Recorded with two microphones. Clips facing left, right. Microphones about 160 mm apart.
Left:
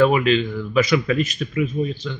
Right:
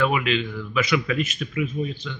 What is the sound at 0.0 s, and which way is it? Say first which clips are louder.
Speech: left 6 dB; 40° left (ahead or behind).